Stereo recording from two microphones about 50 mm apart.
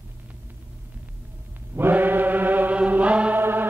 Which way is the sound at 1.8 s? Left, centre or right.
Right.